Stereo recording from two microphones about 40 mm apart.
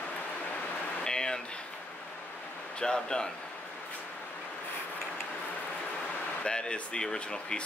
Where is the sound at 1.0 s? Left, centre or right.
Centre.